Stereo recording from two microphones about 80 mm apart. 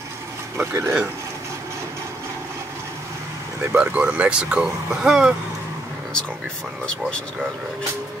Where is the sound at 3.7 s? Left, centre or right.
Centre.